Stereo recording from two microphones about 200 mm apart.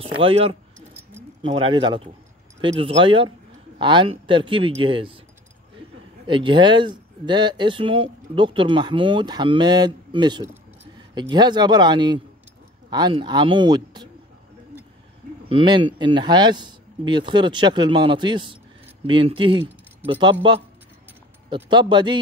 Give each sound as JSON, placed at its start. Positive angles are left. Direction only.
{"t": 0.0, "sound": "speech", "side_deg": -25}
{"t": 6.2, "sound": "speech", "side_deg": -25}
{"t": 15.4, "sound": "speech", "side_deg": -25}
{"t": 21.5, "sound": "speech", "side_deg": -25}